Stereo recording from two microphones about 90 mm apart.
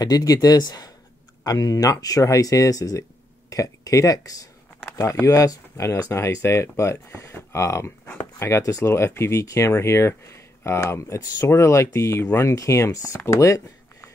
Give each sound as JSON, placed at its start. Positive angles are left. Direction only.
{"t": 0.0, "sound": "speech", "side_deg": 45}